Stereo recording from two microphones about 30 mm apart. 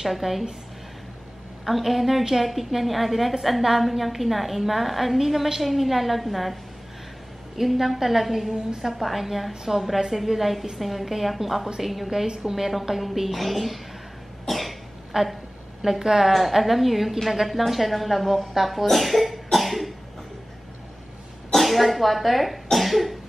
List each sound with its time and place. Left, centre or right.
0.0 s a woman's voice: centre
1.7 s a woman's voice: centre
14.5 s cough: centre
15.1 s a woman's voice: right
16.3 s a woman's voice: centre
18.9 s cough: centre
21.5 s speech: centre